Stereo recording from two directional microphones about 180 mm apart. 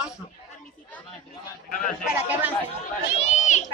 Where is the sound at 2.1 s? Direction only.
10° right (ahead or behind).